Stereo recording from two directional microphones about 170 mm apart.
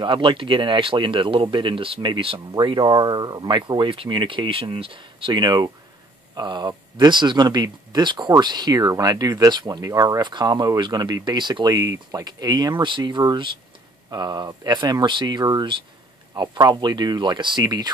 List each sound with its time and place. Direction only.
0.0 s speech: 30° right (ahead or behind)